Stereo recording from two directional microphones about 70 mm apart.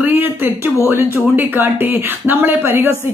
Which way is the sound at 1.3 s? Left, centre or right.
Right.